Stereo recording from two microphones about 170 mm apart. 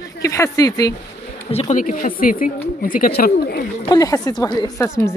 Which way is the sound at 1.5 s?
40° left (ahead or behind).